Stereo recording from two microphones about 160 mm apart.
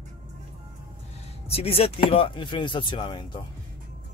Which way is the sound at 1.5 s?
40° left (ahead or behind).